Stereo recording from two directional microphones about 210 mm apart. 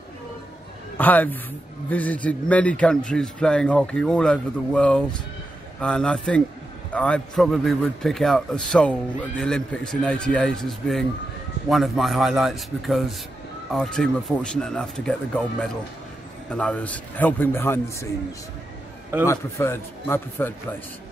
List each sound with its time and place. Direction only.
0.9 s a man's voice: 10° left (ahead or behind)
19.2 s a man's voice: 10° left (ahead or behind)